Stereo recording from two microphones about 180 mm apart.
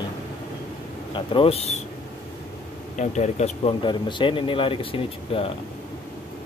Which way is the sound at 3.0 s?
40° left (ahead or behind).